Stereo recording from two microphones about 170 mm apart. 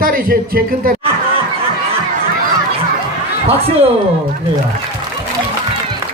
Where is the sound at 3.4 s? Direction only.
35° right (ahead or behind).